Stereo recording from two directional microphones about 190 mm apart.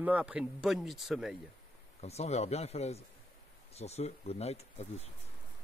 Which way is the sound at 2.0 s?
35° left (ahead or behind).